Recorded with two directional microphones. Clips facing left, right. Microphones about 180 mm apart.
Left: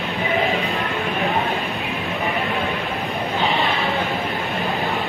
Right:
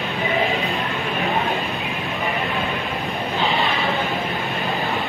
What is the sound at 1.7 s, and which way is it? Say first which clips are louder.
Vehicle: left 1 dB; centre (ahead or behind).